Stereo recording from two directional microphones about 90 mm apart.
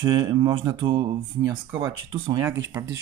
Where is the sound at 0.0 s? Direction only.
60° right (ahead or behind).